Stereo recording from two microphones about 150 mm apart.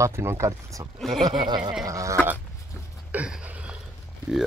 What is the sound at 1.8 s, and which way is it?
Speech, 20° right (ahead or behind).